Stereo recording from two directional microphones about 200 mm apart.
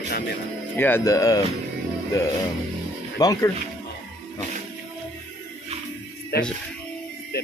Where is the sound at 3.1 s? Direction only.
20° left (ahead or behind).